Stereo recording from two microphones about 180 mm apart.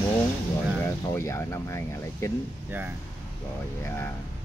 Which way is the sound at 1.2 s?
15° left (ahead or behind).